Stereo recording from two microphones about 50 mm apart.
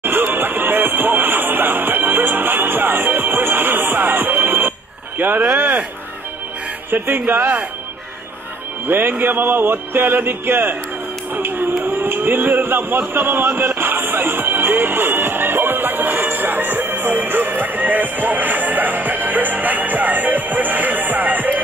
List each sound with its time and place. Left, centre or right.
0.0 s music: right
5.2 s speech: right
6.9 s speech: right
8.8 s speech: right
11.3 s a sound: right